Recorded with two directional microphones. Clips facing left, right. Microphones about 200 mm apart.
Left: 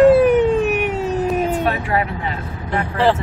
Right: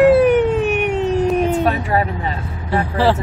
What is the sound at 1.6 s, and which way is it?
Speech, 35° right (ahead or behind).